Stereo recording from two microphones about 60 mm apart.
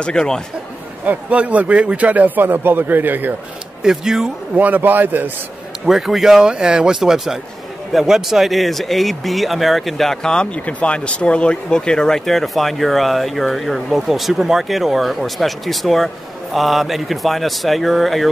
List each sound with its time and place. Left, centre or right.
0.0 s speech: centre
1.0 s a man's voice: right
3.8 s speech: centre
4.6 s a man's voice: right
5.9 s speech: centre